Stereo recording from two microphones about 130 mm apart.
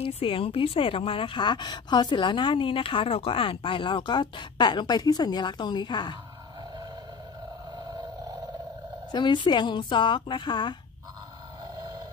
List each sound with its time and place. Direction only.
0.0 s a woman's voice: 45° left (ahead or behind)
9.1 s a woman's voice: 35° left (ahead or behind)